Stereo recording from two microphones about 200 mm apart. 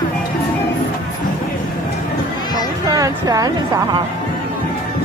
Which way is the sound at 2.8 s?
20° right (ahead or behind).